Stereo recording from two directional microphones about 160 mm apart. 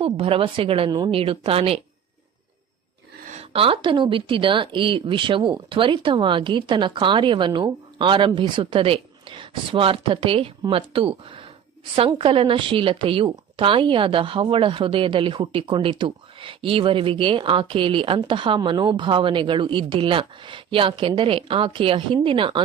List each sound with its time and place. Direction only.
0.0 s a woman's voice: 35° right (ahead or behind)
3.3 s a woman's voice: 40° right (ahead or behind)